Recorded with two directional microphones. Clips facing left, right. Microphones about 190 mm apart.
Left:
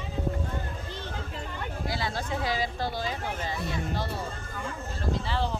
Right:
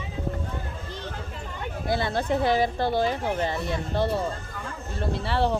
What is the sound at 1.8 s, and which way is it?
Speech, 55° right (ahead or behind).